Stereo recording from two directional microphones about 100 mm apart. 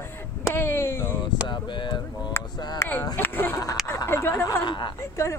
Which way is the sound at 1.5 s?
50° left (ahead or behind).